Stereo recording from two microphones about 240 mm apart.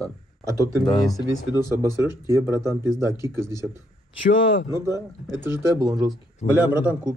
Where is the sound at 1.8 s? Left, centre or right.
Centre.